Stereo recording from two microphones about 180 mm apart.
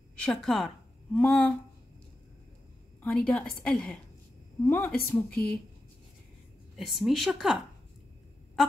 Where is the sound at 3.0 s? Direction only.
10° left (ahead or behind).